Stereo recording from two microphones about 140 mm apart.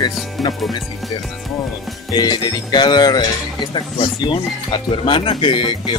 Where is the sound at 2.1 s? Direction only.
30° left (ahead or behind).